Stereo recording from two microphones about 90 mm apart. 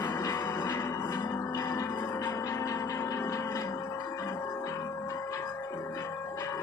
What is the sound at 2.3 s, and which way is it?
Music, 40° left (ahead or behind).